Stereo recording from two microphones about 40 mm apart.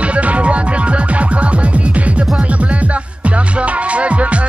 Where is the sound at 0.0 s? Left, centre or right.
Right.